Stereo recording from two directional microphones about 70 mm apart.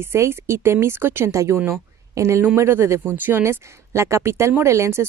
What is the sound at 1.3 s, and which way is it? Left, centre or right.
A woman's voice, right.